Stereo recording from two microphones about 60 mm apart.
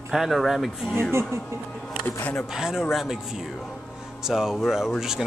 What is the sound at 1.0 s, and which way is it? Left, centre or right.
Speech, right.